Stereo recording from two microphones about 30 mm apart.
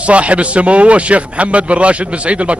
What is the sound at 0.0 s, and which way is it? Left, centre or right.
A man's voice, right.